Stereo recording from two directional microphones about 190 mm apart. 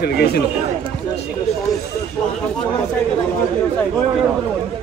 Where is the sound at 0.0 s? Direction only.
60° left (ahead or behind).